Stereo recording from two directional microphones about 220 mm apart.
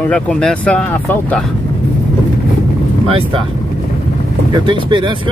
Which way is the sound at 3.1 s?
25° right (ahead or behind).